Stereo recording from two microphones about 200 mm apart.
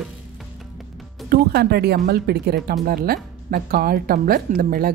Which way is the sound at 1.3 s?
50° right (ahead or behind).